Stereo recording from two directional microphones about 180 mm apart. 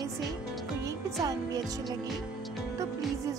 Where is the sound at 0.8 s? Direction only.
20° right (ahead or behind).